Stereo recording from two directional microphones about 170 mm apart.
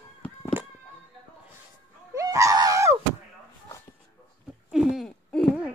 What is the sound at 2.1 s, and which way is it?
Screaming, 20° right (ahead or behind).